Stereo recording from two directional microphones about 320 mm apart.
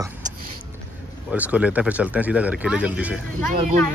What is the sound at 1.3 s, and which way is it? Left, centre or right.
Speech, centre.